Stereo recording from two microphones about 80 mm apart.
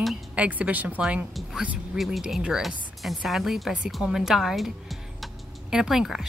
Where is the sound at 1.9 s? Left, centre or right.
Centre.